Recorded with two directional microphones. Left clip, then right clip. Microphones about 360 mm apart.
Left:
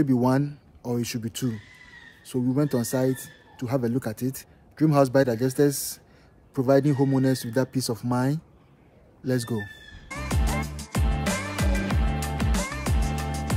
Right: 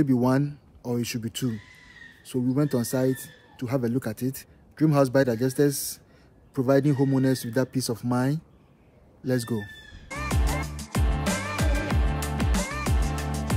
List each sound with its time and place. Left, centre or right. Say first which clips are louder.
0.0 s a man's voice: even; centre
9.2 s music: even; centre